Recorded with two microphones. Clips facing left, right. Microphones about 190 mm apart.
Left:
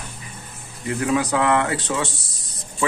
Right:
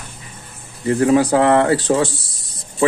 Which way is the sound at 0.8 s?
35° right (ahead or behind).